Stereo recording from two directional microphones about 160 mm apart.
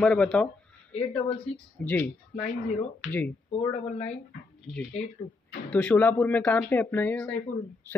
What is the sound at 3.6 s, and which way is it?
Speech, 40° left (ahead or behind).